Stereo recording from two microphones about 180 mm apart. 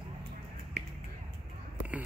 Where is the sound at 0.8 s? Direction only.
65° right (ahead or behind).